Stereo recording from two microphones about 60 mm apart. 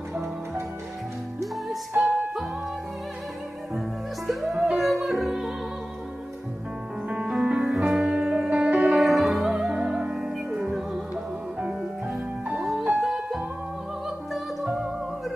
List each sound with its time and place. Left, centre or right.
1.4 s music: centre
4.3 s music: centre
7.1 s music: centre
8.5 s music: right
8.7 s music: centre
12.5 s music: centre